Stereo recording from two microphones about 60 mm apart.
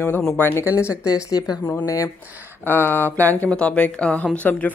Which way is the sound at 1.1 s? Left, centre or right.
Left.